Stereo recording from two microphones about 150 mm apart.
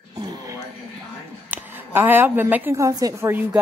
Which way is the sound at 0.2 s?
25° right (ahead or behind).